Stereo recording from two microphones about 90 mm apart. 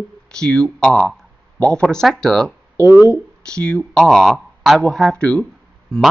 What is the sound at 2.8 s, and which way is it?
Speech, 30° right (ahead or behind).